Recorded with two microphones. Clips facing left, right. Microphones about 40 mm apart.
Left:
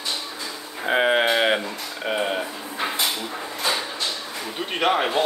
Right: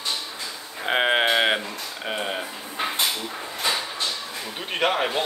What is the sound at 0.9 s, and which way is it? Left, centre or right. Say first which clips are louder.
Speech: left 2 dB; right.